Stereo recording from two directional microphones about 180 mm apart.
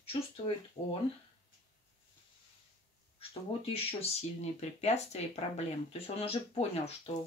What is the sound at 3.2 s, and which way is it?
Speech, 30° left (ahead or behind).